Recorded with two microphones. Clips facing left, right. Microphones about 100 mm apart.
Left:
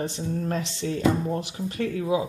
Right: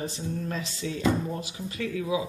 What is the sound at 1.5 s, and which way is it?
Speech, 45° left (ahead or behind).